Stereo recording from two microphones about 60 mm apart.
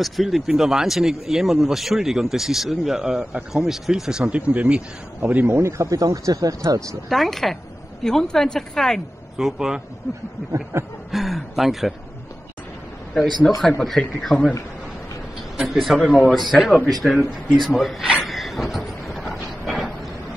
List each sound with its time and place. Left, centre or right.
0.0 s speech: centre; by 4.8 s right
5.2 s speech: right
5.6 s a sound: right
5.9 s speech: right
7.1 s speech: centre
9.4 s speech: centre
10.1 s a sound: left
10.5 s a sound: right
11.1 s speech: centre
13.1 s speech: centre
15.7 s speech: centre
17.6 s a sound: centre